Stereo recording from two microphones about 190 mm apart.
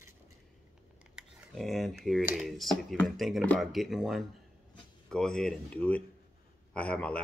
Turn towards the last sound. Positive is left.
turn(degrees=5)  # may be behind; listen again after turning